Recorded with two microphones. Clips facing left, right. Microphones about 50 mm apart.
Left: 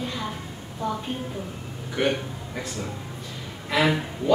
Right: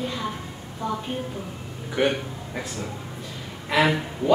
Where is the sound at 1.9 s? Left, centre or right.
Centre.